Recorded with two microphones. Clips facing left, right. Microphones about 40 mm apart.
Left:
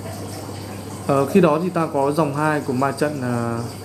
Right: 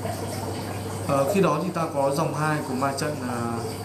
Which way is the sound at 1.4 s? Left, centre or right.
Centre.